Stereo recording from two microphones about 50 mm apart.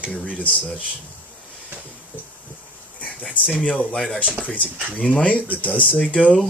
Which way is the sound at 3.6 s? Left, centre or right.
Left.